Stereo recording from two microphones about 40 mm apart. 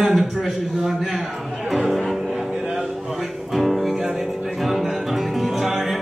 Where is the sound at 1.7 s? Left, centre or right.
Centre.